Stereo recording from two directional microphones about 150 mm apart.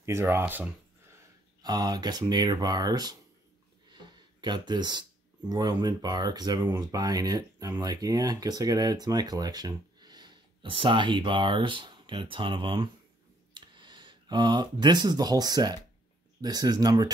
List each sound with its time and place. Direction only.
0.0 s speech: 20° right (ahead or behind)
1.1 s speech: 25° right (ahead or behind)
4.4 s speech: 30° right (ahead or behind)